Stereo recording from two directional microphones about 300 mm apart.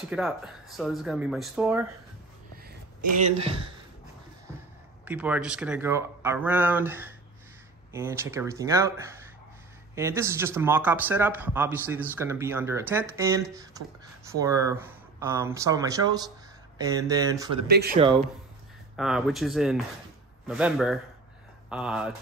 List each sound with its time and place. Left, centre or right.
0.1 s speech: centre
3.3 s a man's voice: centre
5.0 s a man's voice: centre
17.6 s speech: right
17.9 s a man's voice: centre
18.9 s speech: centre